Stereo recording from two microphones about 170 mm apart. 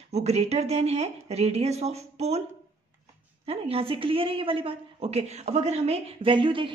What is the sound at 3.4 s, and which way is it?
A woman's voice, 35° right (ahead or behind).